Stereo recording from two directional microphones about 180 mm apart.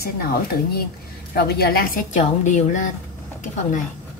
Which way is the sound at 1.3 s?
60° left (ahead or behind).